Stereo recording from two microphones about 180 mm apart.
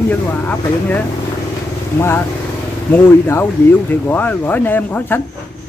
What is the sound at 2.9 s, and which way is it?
Speech, 10° left (ahead or behind).